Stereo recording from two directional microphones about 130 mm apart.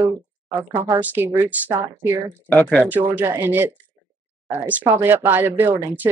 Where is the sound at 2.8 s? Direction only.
15° right (ahead or behind).